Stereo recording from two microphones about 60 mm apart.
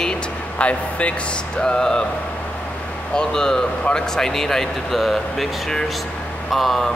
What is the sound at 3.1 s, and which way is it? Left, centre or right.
Speech, centre.